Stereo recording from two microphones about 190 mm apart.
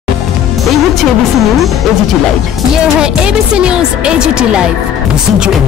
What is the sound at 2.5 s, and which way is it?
Speech, centre (ahead or behind).